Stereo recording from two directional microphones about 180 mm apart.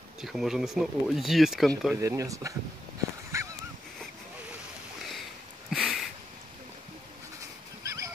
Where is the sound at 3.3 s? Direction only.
15° right (ahead or behind).